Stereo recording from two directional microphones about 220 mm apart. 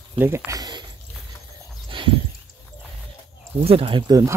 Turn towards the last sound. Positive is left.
turn(degrees=-15)  # may be behind; listen again after turning